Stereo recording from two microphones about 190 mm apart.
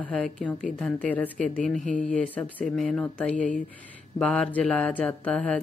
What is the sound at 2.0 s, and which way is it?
Speech, 5° left (ahead or behind).